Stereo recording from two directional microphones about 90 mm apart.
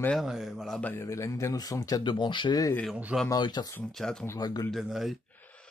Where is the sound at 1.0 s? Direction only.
35° left (ahead or behind).